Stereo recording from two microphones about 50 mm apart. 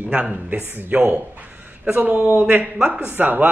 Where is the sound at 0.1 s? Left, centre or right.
Right.